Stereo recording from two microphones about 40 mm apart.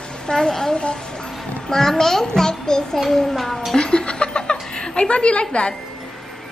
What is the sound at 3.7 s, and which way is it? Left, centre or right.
Chuckle, left.